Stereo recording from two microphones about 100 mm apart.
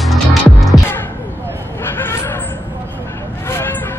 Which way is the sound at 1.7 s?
20° left (ahead or behind).